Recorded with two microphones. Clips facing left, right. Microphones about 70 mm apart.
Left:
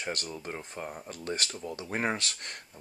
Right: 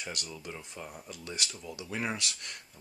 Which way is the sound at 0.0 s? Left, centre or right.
Left.